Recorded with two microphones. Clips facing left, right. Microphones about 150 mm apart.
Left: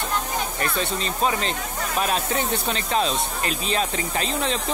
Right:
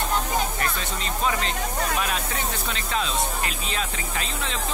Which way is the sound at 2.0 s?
35° left (ahead or behind).